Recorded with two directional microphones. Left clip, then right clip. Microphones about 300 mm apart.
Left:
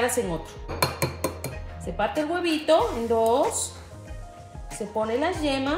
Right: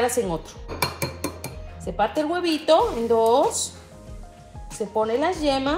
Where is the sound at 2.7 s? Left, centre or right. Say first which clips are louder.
Right 3 dB; centre.